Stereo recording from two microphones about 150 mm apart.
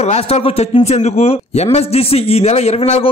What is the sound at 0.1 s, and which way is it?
Speech, 45° left (ahead or behind).